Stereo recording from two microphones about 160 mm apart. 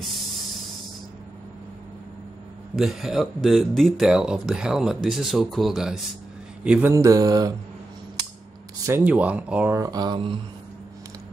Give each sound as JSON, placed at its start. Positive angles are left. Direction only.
{"t": 2.7, "sound": "speech", "side_deg": 0}
{"t": 6.6, "sound": "mantra", "side_deg": -10}
{"t": 8.8, "sound": "speech", "side_deg": -10}